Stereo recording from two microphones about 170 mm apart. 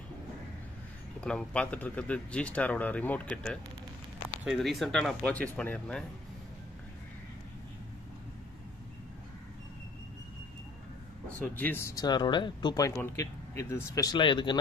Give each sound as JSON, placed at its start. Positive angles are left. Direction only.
{"t": 1.2, "sound": "speech", "side_deg": 5}
{"t": 11.3, "sound": "speech", "side_deg": 10}